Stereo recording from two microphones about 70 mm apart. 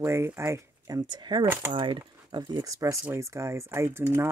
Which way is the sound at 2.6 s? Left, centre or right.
Right.